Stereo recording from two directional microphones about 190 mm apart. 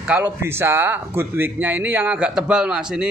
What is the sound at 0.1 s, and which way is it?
A man's voice, 10° right (ahead or behind).